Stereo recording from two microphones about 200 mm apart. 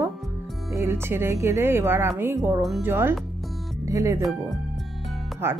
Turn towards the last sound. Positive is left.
turn(degrees=-10)  # may be behind; listen again after turning